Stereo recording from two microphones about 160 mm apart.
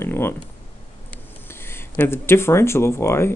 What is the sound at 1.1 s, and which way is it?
Speech, 15° left (ahead or behind).